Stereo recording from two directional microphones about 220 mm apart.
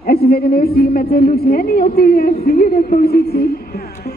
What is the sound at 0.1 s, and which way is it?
A woman's voice, 45° left (ahead or behind).